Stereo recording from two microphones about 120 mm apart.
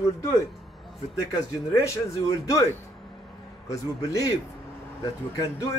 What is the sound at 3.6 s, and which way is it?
Speech, 30° left (ahead or behind).